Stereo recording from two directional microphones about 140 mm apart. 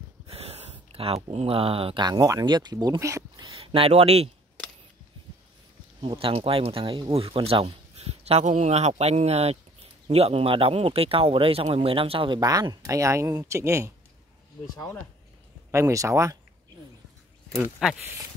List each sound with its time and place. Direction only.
0.3 s speech: 45° right (ahead or behind); by 3.5 s 25° right (ahead or behind)
3.5 s speech: 40° right (ahead or behind)
5.9 s speech: 40° right (ahead or behind); by 13.9 s 20° right (ahead or behind)
15.7 s speech: 20° right (ahead or behind)
17.8 s speech: 5° right (ahead or behind)